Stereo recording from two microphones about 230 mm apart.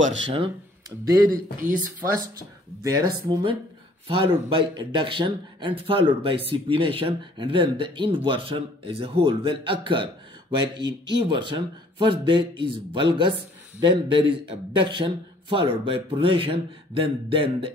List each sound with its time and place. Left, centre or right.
1.3 s speech: right
2.8 s speech: centre